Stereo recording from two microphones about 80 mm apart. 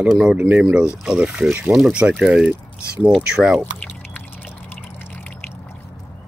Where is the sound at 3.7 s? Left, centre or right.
Left.